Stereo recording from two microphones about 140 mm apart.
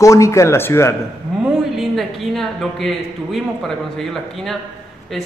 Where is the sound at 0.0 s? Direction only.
20° left (ahead or behind).